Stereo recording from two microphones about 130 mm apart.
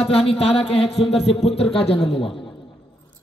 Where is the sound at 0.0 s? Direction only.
50° left (ahead or behind).